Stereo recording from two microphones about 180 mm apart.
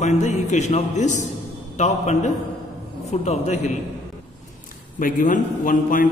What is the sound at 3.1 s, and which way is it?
Music, 40° left (ahead or behind).